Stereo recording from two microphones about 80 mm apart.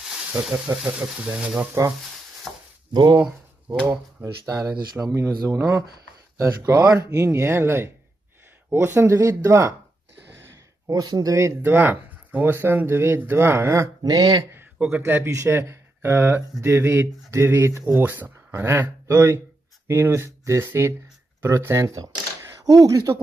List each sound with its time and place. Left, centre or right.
0.3 s speech: centre
1.7 s speech: right
2.5 s chopping: centre
2.9 s speech: right
4.2 s speech: right
5.0 s speech: centre
5.6 s speech: right
10.9 s speech: right
11.6 s speech: right
14.0 s speech: right
15.0 s speech: right
15.3 s speech: right
16.0 s speech: right
18.0 s speech: right